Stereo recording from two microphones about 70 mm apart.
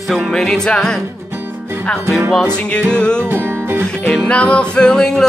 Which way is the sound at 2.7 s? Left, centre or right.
Centre.